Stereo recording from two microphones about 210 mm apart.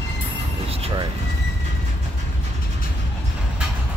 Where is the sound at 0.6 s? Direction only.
30° right (ahead or behind).